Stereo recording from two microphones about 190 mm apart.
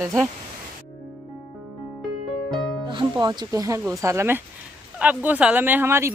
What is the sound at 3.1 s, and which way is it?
Speech, 20° right (ahead or behind).